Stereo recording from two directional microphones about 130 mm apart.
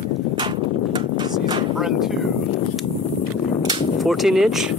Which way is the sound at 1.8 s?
5° right (ahead or behind).